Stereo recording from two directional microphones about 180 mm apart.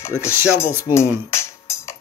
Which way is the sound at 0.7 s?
10° right (ahead or behind).